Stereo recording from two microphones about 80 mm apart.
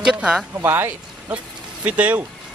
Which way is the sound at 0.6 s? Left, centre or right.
Right.